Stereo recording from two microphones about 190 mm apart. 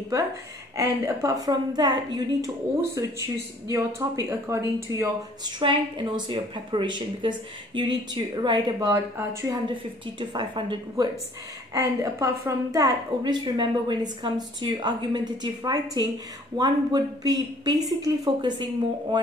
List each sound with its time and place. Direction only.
0.7 s speech: 15° right (ahead or behind)
10.1 s speech: 25° right (ahead or behind)